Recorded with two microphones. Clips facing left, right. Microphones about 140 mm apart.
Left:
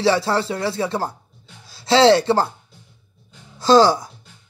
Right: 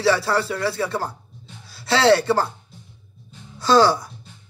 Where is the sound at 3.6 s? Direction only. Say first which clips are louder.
Left 3 dB; 25° left (ahead or behind).